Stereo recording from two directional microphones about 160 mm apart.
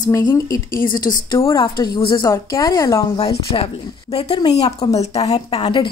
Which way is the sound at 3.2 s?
35° left (ahead or behind).